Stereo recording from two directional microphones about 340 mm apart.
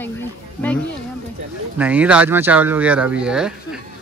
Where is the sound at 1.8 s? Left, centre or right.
Centre.